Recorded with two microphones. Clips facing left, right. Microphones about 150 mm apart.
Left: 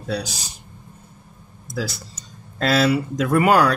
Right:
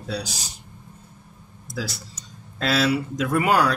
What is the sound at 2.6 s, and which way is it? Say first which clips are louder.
Speech: left 3 dB; 45° left (ahead or behind).